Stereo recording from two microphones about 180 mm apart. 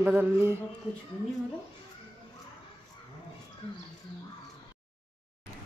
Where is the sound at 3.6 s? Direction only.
30° left (ahead or behind).